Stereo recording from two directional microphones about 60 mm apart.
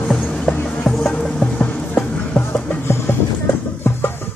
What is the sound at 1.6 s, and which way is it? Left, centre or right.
Music, left.